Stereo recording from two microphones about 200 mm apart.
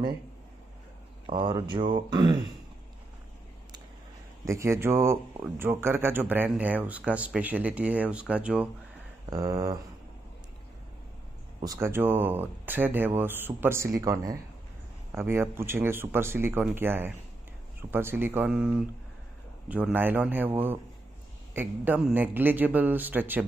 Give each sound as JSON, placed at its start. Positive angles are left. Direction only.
{"t": 1.2, "sound": "speech", "side_deg": -25}
{"t": 4.5, "sound": "speech", "side_deg": -15}
{"t": 9.3, "sound": "speech", "side_deg": -20}
{"t": 11.6, "sound": "speech", "side_deg": -15}